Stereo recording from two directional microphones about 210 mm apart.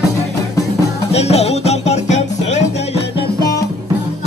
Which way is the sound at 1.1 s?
30° left (ahead or behind).